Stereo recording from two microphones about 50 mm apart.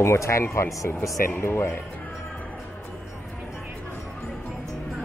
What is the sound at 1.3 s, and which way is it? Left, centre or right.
Speech, left.